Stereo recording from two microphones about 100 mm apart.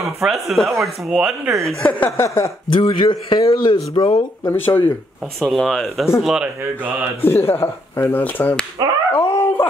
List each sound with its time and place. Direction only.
0.2 s speech: centre (ahead or behind)
1.7 s speech: 10° left (ahead or behind)
2.0 s speech: 25° left (ahead or behind)
2.7 s a man's voice: 55° left (ahead or behind)
4.5 s speech: 20° left (ahead or behind)
5.4 s speech: centre (ahead or behind)
6.6 s speech: 15° right (ahead or behind)
7.2 s speech: 25° left (ahead or behind)
9.1 s dog: 25° left (ahead or behind)